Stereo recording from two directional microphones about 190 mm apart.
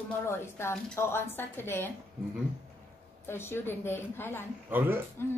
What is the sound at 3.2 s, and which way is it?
A woman's voice, 10° left (ahead or behind).